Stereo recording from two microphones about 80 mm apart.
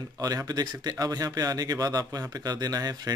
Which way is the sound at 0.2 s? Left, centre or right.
Right.